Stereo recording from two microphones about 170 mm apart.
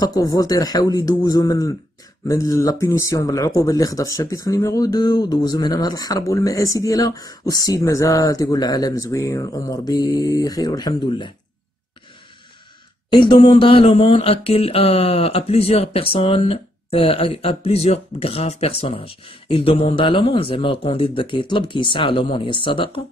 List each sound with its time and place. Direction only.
0.0 s speech: 20° left (ahead or behind)
13.1 s speech: 30° left (ahead or behind)